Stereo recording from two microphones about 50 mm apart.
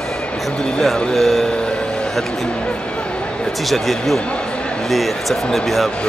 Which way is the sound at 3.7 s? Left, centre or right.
Centre.